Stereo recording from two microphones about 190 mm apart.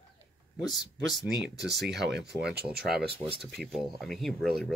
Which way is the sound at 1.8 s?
65° right (ahead or behind).